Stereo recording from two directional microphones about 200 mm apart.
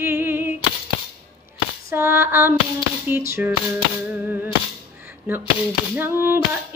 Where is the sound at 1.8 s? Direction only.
10° right (ahead or behind).